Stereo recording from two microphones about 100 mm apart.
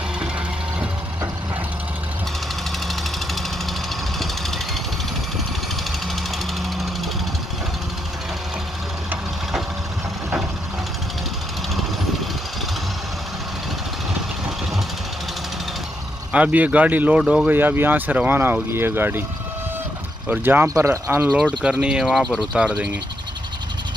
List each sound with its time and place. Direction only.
16.3 s speech: 10° right (ahead or behind)
17.5 s speech: 20° right (ahead or behind)
20.2 s speech: 20° right (ahead or behind)
20.6 s speech: 30° right (ahead or behind)
21.5 s speech: 5° right (ahead or behind)